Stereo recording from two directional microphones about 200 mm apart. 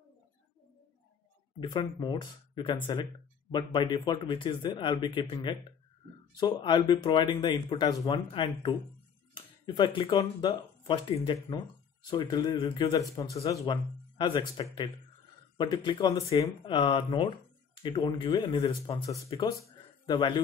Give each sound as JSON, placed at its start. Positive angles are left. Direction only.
{"t": 1.6, "sound": "speech", "side_deg": 20}